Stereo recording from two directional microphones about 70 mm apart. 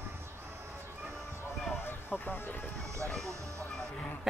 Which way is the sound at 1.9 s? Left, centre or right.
Left.